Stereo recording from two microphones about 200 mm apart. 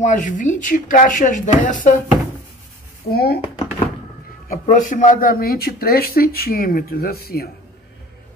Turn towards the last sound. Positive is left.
turn(degrees=50)  # may be behind; listen again after turning